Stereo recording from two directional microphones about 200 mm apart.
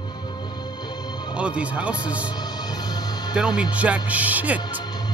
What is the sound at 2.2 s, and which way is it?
Music, 20° left (ahead or behind).